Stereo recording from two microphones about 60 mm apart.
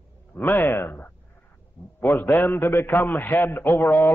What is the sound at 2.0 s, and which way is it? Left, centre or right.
A man's voice, left.